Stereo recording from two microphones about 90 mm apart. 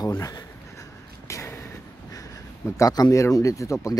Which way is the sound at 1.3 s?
30° left (ahead or behind).